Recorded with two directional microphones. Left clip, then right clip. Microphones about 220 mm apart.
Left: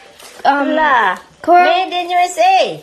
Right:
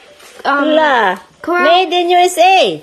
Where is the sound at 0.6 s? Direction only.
40° right (ahead or behind).